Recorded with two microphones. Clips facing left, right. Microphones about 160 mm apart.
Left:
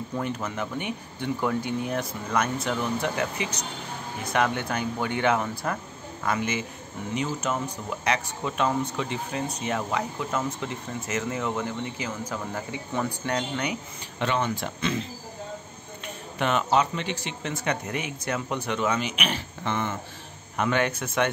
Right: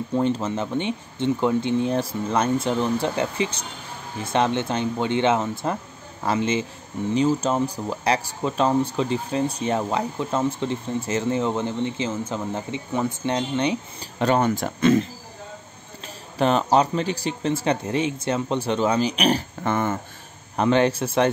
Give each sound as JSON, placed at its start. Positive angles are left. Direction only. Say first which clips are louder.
{"t": 0.1, "sound": "speech", "louder": "right 9 dB", "side_deg": -25}
{"t": 16.3, "sound": "speech", "louder": "right 5 dB", "side_deg": -35}
{"t": 20.5, "sound": "speech", "louder": "right 6 dB", "side_deg": -30}